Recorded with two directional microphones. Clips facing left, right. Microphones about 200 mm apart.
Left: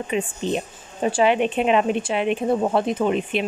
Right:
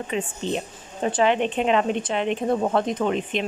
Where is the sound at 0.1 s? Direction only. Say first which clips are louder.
Left 3 dB; 15° left (ahead or behind).